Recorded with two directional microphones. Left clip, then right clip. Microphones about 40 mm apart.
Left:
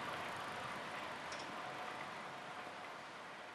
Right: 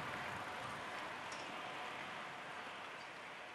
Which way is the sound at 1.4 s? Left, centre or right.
Left.